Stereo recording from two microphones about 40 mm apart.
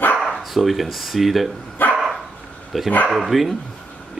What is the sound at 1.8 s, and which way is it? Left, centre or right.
Dog, left.